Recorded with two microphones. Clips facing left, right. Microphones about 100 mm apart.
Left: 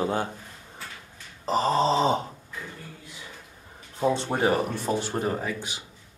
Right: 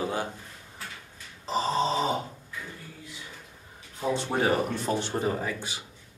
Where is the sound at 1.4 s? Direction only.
45° left (ahead or behind); by 2.2 s 30° left (ahead or behind).